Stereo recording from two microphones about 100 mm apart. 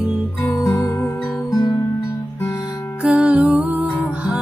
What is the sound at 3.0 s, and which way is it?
Music, 15° right (ahead or behind).